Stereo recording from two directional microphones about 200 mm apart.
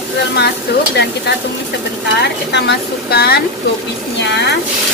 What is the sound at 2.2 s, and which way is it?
Speech, 60° left (ahead or behind).